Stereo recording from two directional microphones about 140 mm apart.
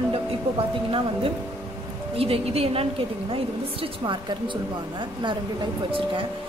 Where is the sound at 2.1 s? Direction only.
45° right (ahead or behind).